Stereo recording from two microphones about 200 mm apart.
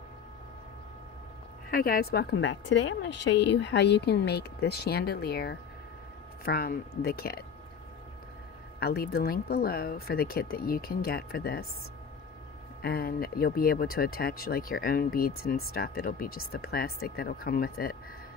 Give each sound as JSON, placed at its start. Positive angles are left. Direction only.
{"t": 1.7, "sound": "a woman's voice", "side_deg": 45}
{"t": 8.7, "sound": "speech", "side_deg": 50}
{"t": 12.8, "sound": "speech", "side_deg": 50}